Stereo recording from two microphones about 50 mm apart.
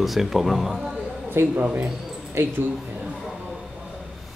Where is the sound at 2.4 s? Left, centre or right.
Right.